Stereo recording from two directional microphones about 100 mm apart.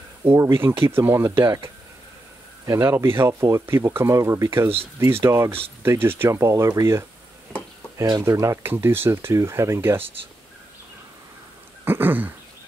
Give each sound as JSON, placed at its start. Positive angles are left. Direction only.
{"t": 0.2, "sound": "speech", "side_deg": -25}
{"t": 2.6, "sound": "speech", "side_deg": -30}
{"t": 8.0, "sound": "speech", "side_deg": -35}
{"t": 11.8, "sound": "speech", "side_deg": -20}